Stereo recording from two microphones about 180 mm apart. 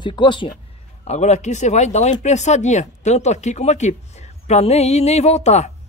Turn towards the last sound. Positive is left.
turn(degrees=40)  # may be behind; listen again after turning